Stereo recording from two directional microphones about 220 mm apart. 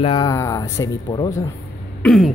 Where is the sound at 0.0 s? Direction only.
20° left (ahead or behind).